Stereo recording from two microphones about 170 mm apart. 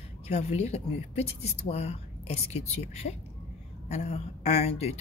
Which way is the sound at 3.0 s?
70° left (ahead or behind).